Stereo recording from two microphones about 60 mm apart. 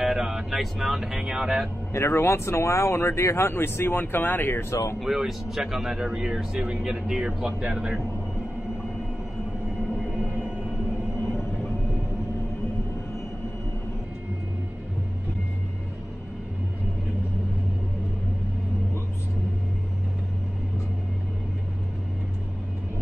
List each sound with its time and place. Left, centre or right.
0.0 s speech: centre
2.0 s speech: left
4.6 s speech: left
5.0 s speech: centre